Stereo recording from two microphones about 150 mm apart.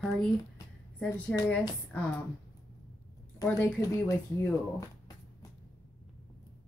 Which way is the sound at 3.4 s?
20° left (ahead or behind).